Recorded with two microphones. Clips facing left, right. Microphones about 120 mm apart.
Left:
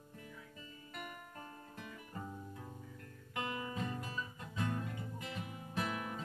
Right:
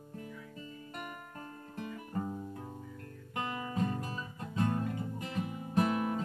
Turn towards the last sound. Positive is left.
turn(degrees=-40)  # may be behind; listen again after turning